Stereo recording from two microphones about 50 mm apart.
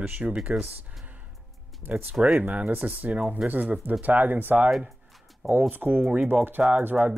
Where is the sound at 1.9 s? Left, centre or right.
Right.